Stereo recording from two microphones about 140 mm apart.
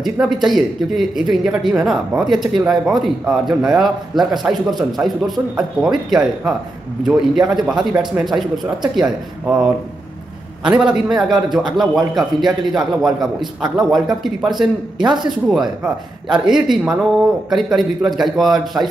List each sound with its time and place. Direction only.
0.0 s a man's voice: centre (ahead or behind)
10.8 s a man's voice: 5° right (ahead or behind)
15.0 s speech: 30° right (ahead or behind)
15.8 s a man's voice: 5° right (ahead or behind)